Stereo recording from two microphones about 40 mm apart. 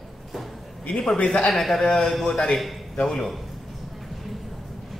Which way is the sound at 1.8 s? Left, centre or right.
Centre.